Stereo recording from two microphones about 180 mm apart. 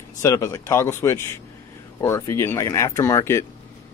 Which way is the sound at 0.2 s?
15° left (ahead or behind).